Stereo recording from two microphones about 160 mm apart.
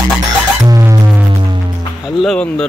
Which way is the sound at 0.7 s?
20° right (ahead or behind).